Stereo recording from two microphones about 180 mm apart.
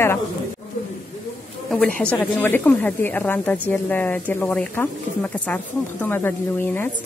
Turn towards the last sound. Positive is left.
turn(degrees=10)  # may be behind; listen again after turning